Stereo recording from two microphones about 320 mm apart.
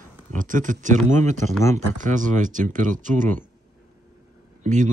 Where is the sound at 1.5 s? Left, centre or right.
Centre.